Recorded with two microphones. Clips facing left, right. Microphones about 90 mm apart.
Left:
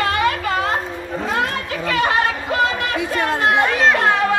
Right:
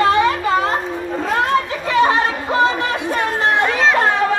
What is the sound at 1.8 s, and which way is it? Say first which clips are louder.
Chatter: even; 25° right (ahead or behind).